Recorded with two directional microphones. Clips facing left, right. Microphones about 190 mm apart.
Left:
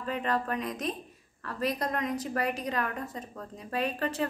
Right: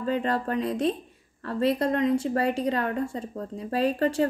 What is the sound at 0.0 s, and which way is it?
A woman's voice, 30° right (ahead or behind).